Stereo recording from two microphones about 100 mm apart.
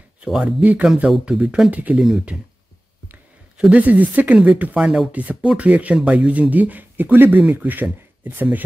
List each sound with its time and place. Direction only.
0.2 s speech: 5° right (ahead or behind)
2.0 s speech: 5° right (ahead or behind)
3.6 s speech: 15° right (ahead or behind)